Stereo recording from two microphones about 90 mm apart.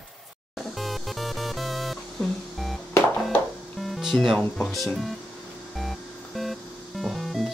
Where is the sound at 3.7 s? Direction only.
Centre (ahead or behind).